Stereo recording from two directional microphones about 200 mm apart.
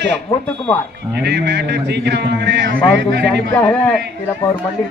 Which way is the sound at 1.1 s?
55° right (ahead or behind).